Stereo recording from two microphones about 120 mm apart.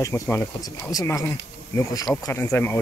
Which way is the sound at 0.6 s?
30° left (ahead or behind).